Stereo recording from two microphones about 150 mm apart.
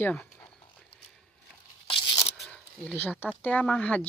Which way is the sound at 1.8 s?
40° left (ahead or behind).